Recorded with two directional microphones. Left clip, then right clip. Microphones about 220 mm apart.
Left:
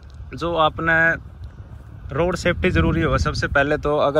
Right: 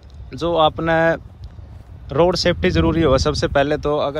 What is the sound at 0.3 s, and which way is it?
Speech, 15° right (ahead or behind).